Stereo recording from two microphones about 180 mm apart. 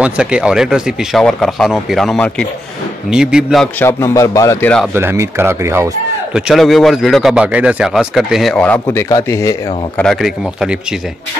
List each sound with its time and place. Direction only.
0.0 s speech: 5° right (ahead or behind)
3.8 s speech: 15° left (ahead or behind)
4.9 s speech: 15° right (ahead or behind)
6.3 s speech: centre (ahead or behind); by 9.6 s 20° left (ahead or behind)
9.9 s speech: 5° left (ahead or behind)